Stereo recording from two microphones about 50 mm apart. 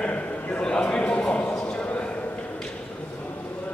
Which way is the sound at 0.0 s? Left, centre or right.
Left.